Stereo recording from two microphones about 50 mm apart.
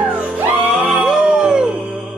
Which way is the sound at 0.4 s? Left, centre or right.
Right.